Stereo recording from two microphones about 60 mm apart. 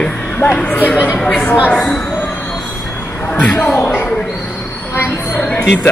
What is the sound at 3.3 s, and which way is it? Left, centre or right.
Speech, left.